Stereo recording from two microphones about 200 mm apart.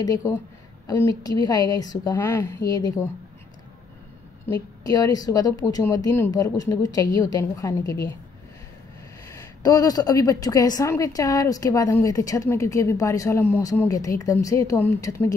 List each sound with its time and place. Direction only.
0.0 s a woman's voice: 15° left (ahead or behind)
4.5 s a woman's voice: 20° left (ahead or behind)
9.6 s a woman's voice: 20° left (ahead or behind)